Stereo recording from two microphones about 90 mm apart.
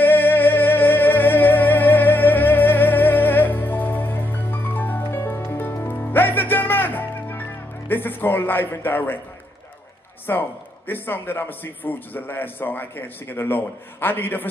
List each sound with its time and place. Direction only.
0.0 s music: 20° left (ahead or behind)
7.9 s a man's voice: 20° left (ahead or behind)
10.3 s a man's voice: 30° left (ahead or behind)